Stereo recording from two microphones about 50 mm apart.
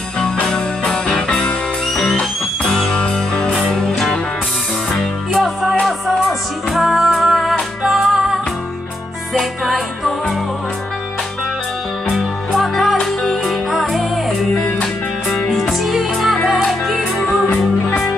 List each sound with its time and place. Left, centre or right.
0.5 s music: centre
3.5 s music: centre
5.3 s music: centre
12.1 s music: centre
15.8 s music: centre